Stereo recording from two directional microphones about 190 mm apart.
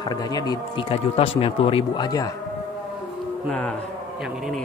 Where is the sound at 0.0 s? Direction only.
20° left (ahead or behind).